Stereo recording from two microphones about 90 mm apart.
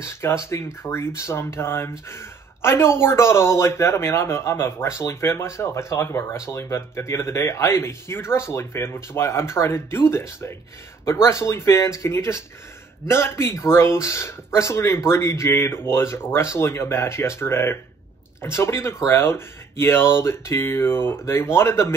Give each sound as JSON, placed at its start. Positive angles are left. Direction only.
{"t": 0.0, "sound": "speech", "side_deg": 30}